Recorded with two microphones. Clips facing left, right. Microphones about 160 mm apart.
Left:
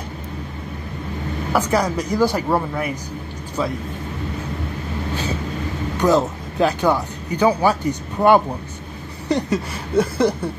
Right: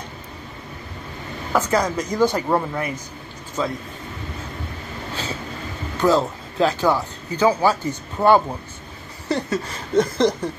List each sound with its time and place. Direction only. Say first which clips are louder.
1.5 s speech: left 1 dB; 10° left (ahead or behind)
5.9 s speech: left 1 dB; 15° left (ahead or behind)